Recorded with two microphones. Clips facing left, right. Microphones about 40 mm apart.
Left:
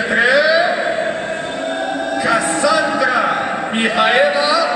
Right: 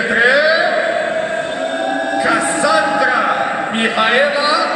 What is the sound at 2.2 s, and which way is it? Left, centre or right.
Music, centre.